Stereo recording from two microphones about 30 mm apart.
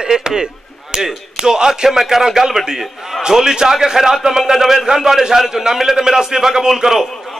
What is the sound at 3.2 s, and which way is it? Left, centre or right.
A man's voice, right.